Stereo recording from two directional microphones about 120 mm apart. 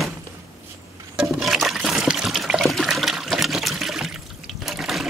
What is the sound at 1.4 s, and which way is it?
Water, centre (ahead or behind).